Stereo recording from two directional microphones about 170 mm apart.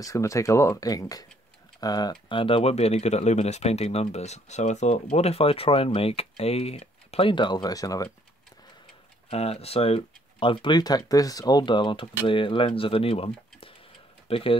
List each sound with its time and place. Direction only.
0.0 s speech: 20° left (ahead or behind)
9.3 s speech: 35° left (ahead or behind)